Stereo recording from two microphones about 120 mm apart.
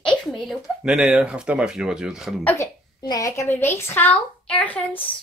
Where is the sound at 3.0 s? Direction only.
30° left (ahead or behind); by 5.0 s 15° left (ahead or behind).